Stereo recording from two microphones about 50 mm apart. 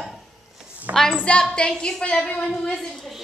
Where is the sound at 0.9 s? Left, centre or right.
Right.